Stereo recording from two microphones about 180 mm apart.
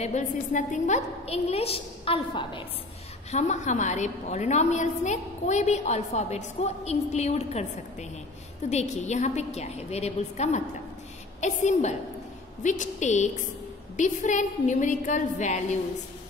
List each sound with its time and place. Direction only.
0.0 s a woman's voice: 40° left (ahead or behind)
3.3 s a woman's voice: 40° left (ahead or behind)
8.6 s a woman's voice: 40° left (ahead or behind)